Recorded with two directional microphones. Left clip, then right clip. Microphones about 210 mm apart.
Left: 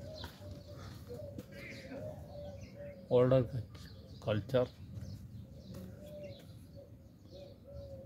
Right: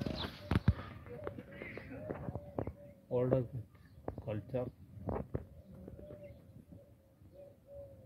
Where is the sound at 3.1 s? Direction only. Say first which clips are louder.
Left 5 dB; 15° left (ahead or behind).